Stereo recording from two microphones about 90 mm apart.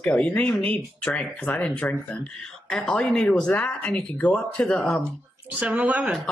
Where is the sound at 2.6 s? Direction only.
5° left (ahead or behind).